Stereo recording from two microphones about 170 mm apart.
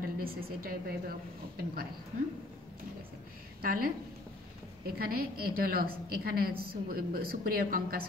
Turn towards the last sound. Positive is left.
turn(degrees=-60)  # may be behind; listen again after turning